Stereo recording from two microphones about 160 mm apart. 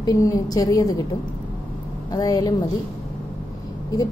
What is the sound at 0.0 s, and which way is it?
A woman's voice, 20° left (ahead or behind).